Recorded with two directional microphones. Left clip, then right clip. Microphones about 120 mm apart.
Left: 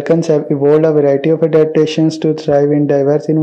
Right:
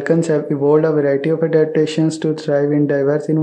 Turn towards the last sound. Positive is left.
turn(degrees=20)  # may be behind; listen again after turning